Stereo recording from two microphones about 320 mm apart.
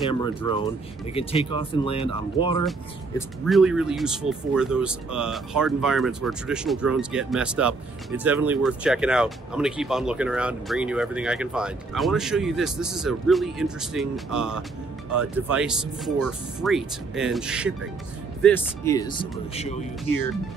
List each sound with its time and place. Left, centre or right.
0.1 s speech: centre
3.2 s speech: centre
18.4 s speech: centre
19.5 s speech: centre